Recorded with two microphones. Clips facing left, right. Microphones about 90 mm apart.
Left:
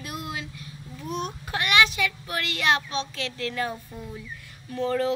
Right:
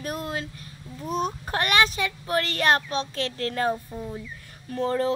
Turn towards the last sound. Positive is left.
turn(degrees=-35)  # may be behind; listen again after turning